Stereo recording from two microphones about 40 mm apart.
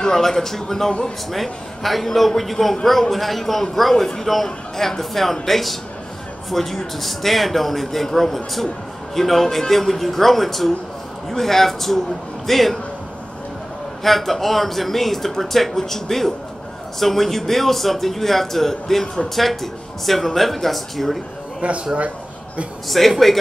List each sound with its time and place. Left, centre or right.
0.0 s speech: centre
1.3 s a man's voice: centre
14.0 s a man's voice: centre
21.5 s a man's voice: right
22.8 s a man's voice: centre